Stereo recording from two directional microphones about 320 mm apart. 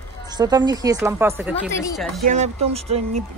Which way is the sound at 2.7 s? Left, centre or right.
Centre.